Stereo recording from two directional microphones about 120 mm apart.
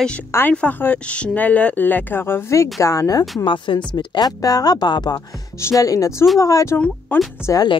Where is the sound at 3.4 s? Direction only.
45° left (ahead or behind); by 6.8 s 30° left (ahead or behind).